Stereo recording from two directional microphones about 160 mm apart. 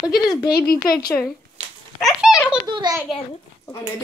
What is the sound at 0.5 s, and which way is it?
Speech, 70° left (ahead or behind).